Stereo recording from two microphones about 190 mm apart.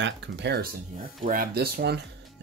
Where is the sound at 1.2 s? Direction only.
50° right (ahead or behind).